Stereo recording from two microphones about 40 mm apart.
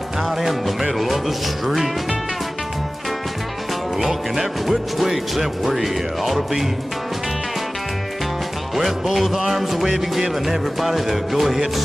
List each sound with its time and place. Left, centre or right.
0.2 s music: centre
4.0 s music: centre
8.7 s music: centre